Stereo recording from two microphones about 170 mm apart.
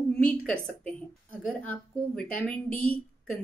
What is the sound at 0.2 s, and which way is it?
A woman's voice, 10° left (ahead or behind).